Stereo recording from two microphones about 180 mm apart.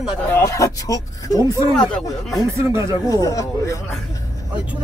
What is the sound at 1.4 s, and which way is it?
Speech, 15° right (ahead or behind).